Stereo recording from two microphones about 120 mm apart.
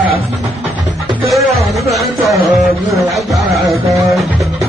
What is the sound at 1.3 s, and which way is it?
Speech, centre (ahead or behind).